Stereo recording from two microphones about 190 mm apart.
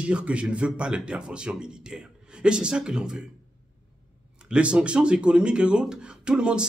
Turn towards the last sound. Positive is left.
turn(degrees=-5)  # may be behind; listen again after turning